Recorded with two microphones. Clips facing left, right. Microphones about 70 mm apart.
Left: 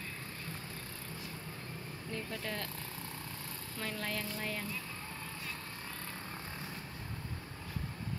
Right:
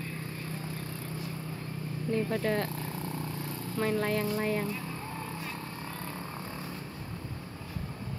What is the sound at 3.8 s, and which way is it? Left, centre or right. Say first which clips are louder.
Speech: right 11 dB; right.